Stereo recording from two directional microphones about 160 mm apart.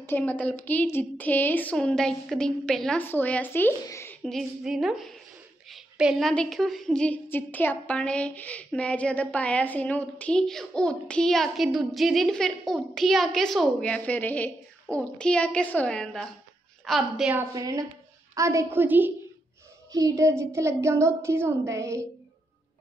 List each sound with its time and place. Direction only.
0.0 s a woman's voice: 10° left (ahead or behind)
4.2 s a woman's voice: centre (ahead or behind)
17.4 s a woman's voice: 20° right (ahead or behind)
19.9 s a woman's voice: 20° right (ahead or behind)